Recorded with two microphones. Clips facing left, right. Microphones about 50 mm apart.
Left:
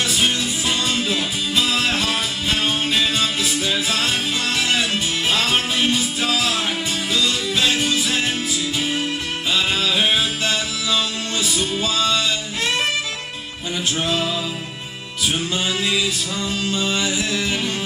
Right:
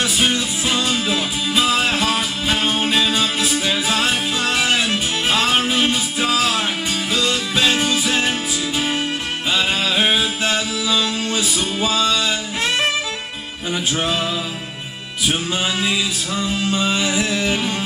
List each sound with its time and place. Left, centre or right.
0.0 s music: centre
9.5 s music: right
13.9 s music: right
15.5 s music: right
16.9 s music: right